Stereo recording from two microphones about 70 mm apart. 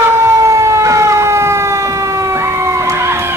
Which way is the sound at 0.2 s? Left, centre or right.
Right.